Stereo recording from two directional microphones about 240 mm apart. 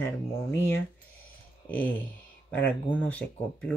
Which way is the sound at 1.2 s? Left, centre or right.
Centre.